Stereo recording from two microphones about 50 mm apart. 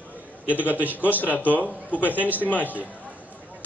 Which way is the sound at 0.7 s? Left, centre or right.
Right.